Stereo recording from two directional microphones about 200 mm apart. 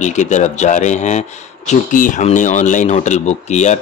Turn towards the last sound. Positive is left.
turn(degrees=35)  # may be behind; listen again after turning